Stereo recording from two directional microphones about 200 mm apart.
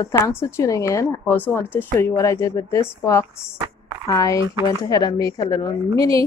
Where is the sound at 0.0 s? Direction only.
10° left (ahead or behind).